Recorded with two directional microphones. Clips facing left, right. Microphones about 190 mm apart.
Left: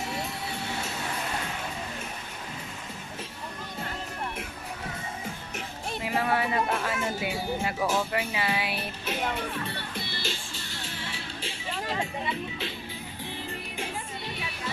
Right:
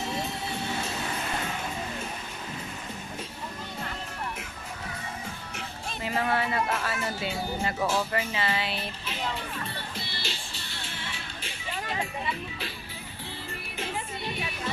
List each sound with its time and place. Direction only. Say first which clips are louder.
5.9 s speech: left 1 dB; 10° left (ahead or behind)
9.0 s music: left 7 dB; 50° left (ahead or behind); by 11.5 s 35° left (ahead or behind)